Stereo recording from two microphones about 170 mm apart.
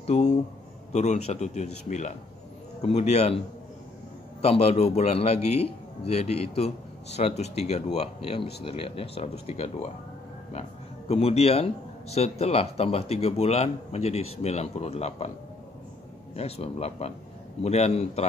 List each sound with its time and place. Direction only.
0.0 s speech: 40° left (ahead or behind)
4.4 s speech: 35° left (ahead or behind)
11.1 s speech: 35° left (ahead or behind)
16.3 s speech: 35° left (ahead or behind)